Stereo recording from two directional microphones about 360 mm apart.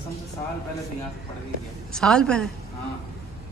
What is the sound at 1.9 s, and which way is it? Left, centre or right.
Speech, centre.